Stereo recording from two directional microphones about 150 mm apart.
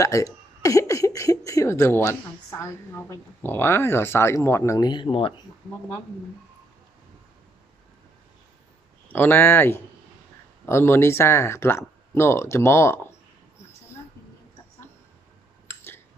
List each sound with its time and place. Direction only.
0.0 s speech: 20° left (ahead or behind)
9.1 s speech: 15° left (ahead or behind)